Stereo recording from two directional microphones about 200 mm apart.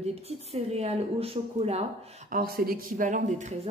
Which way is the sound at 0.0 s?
30° right (ahead or behind).